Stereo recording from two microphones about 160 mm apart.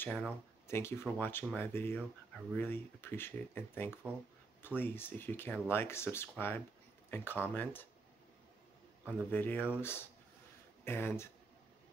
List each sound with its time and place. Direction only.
0.0 s speech: 5° left (ahead or behind)
0.7 s speech: 15° left (ahead or behind)
9.3 s speech: 10° left (ahead or behind)